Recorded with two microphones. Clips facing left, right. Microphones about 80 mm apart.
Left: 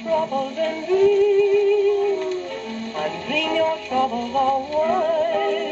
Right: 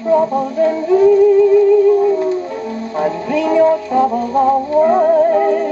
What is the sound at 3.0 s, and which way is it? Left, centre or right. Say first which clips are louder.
Music: right 9 dB; centre.